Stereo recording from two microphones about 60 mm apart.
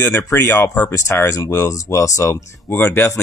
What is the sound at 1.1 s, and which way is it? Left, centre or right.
Speech, left.